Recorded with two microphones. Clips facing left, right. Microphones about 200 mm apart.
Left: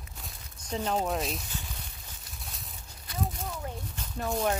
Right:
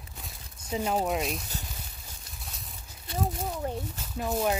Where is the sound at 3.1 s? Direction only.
25° right (ahead or behind).